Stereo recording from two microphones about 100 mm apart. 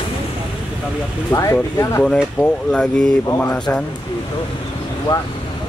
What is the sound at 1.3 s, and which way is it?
Speech, 30° left (ahead or behind).